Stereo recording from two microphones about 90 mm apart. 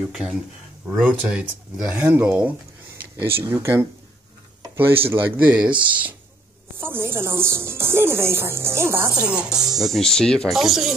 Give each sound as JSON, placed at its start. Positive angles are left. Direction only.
{"t": 0.1, "sound": "speech", "side_deg": -10}
{"t": 1.9, "sound": "speech", "side_deg": -15}
{"t": 9.2, "sound": "speech", "side_deg": -10}
{"t": 10.5, "sound": "speech", "side_deg": 0}